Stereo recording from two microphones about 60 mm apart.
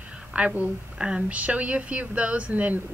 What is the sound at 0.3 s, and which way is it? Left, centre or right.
A woman's voice, right.